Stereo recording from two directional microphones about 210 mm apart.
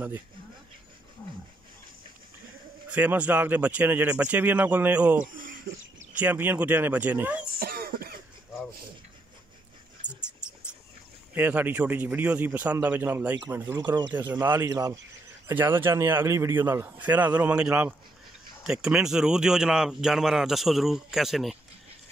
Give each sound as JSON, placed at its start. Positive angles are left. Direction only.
{"t": 2.9, "sound": "a man's voice", "side_deg": -5}
{"t": 7.5, "sound": "cough", "side_deg": -45}
{"t": 10.0, "sound": "a sound", "side_deg": -5}
{"t": 11.3, "sound": "a man's voice", "side_deg": -10}